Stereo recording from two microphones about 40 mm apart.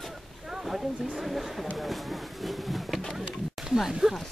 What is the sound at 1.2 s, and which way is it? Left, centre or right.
Speech, centre.